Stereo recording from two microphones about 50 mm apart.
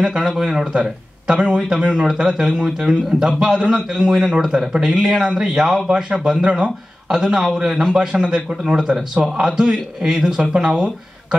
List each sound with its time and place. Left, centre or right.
0.0 s a man's voice: centre